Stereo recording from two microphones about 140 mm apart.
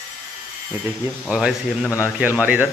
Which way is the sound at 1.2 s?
5° right (ahead or behind).